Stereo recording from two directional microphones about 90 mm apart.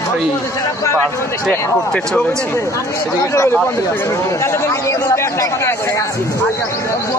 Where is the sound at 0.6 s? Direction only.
35° left (ahead or behind).